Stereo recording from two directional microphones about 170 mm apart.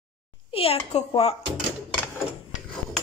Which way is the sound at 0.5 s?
35° left (ahead or behind).